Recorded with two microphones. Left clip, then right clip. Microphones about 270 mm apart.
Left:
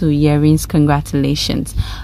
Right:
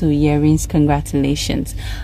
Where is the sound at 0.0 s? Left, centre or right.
Left.